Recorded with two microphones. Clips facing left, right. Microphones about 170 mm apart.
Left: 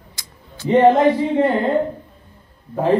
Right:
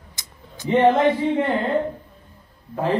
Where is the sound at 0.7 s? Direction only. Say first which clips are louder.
Left 4 dB; 40° left (ahead or behind).